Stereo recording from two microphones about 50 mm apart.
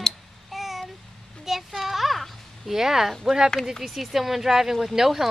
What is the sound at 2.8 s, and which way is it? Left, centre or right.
Speech, centre.